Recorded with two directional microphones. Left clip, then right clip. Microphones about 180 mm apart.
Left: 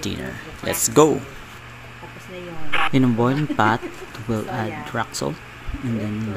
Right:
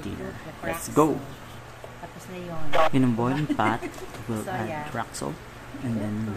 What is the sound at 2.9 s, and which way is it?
Speech, 25° left (ahead or behind).